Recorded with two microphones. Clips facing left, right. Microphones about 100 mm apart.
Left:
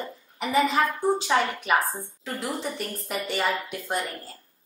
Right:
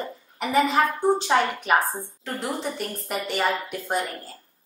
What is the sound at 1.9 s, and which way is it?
A woman's voice, centre (ahead or behind).